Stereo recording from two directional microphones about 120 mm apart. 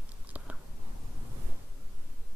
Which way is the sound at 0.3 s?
10° right (ahead or behind).